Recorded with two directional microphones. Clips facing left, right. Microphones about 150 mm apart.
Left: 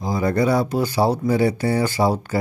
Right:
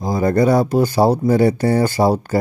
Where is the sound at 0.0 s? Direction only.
45° right (ahead or behind).